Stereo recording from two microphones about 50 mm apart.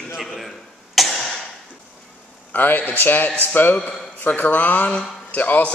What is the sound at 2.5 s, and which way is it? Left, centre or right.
A man's voice, left.